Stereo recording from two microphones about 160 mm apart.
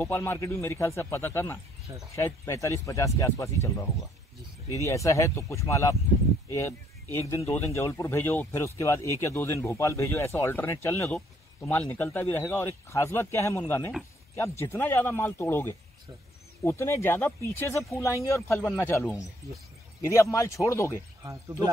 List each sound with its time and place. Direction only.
0.0 s speech: 15° left (ahead or behind)
4.7 s speech: 20° left (ahead or behind)
7.5 s speech: 15° left (ahead or behind)